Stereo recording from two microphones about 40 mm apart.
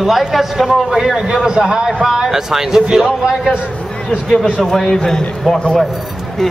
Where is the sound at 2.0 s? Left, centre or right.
Centre.